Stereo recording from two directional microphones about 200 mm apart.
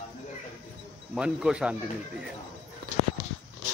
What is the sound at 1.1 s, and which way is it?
Speech, 5° right (ahead or behind).